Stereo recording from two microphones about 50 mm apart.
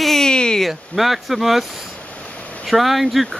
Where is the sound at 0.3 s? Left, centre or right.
Centre.